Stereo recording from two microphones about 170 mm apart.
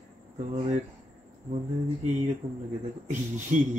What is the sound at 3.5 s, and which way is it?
Speech, 45° right (ahead or behind).